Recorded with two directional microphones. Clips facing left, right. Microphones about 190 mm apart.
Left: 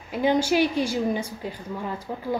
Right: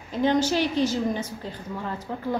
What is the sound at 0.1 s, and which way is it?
A woman's voice, 10° left (ahead or behind).